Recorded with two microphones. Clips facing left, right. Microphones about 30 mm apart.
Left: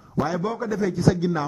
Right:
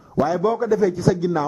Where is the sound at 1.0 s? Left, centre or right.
Centre.